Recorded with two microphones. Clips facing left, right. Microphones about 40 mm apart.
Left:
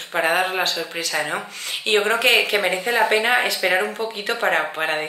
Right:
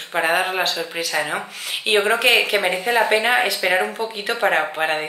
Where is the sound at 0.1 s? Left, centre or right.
Centre.